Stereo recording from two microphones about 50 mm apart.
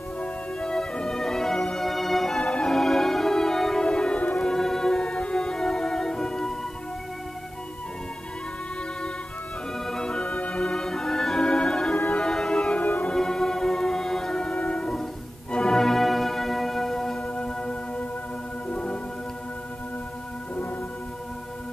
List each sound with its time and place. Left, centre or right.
0.2 s music: centre
2.4 s music: left
2.7 s music: centre
3.8 s music: centre
4.5 s music: centre
9.8 s music: centre
12.8 s music: left
13.1 s music: centre